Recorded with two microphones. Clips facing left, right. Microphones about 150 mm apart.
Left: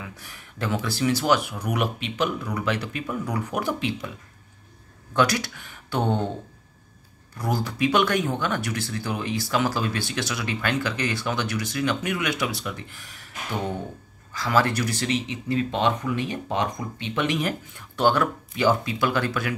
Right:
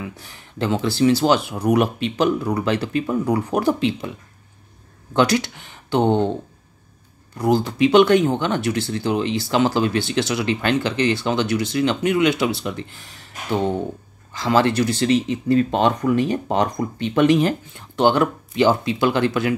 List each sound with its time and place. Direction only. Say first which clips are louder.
0.0 s speech: right 7 dB; 25° right (ahead or behind)
5.1 s speech: right 5 dB; 25° right (ahead or behind)
7.3 s speech: right 8 dB; 25° right (ahead or behind); by 17.4 s 45° right (ahead or behind)
17.4 s speech: right 7 dB; 25° right (ahead or behind)